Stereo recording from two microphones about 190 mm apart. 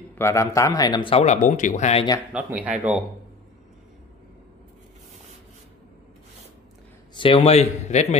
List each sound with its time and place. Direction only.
0.1 s speech: 15° left (ahead or behind); by 2.0 s 35° left (ahead or behind)
2.3 s speech: 5° right (ahead or behind)
7.2 s a man's voice: 30° left (ahead or behind)